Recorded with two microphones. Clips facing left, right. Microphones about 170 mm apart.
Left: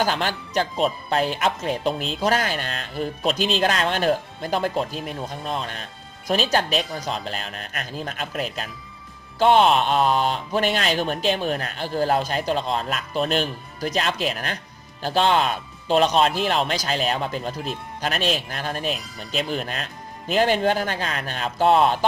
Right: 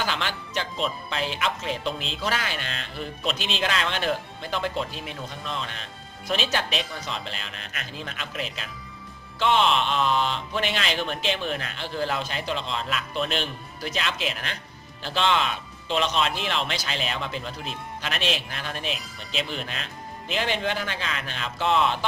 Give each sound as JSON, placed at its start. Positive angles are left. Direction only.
{"t": 0.0, "sound": "speech", "side_deg": 40}